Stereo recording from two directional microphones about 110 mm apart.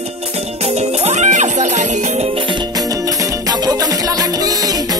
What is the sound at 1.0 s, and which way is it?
Speech, 90° right.